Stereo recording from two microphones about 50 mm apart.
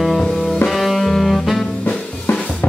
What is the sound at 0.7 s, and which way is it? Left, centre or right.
Music, centre.